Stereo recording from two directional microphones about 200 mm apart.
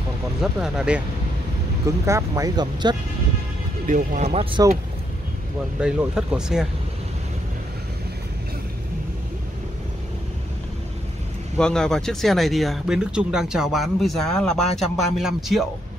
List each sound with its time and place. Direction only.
0.4 s speech: 5° right (ahead or behind)
1.9 s speech: 15° right (ahead or behind)
3.8 s speech: 40° right (ahead or behind); by 4.7 s 25° right (ahead or behind)
5.8 s speech: 5° right (ahead or behind)
11.5 s speech: 5° left (ahead or behind)